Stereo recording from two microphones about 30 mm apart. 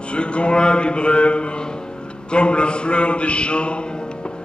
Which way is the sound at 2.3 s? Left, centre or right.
Left.